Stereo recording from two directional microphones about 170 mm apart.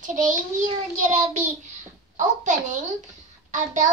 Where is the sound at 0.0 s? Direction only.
50° right (ahead or behind).